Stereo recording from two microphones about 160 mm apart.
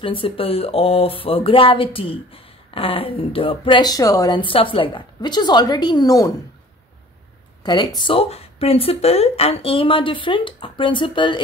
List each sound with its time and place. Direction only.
0.0 s speech: 35° left (ahead or behind)
7.6 s speech: 30° left (ahead or behind)